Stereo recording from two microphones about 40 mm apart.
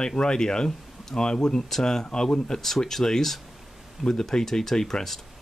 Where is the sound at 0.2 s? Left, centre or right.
Left.